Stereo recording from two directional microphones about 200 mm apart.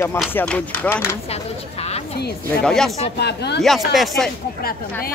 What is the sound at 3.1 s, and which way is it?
Speech, 55° left (ahead or behind).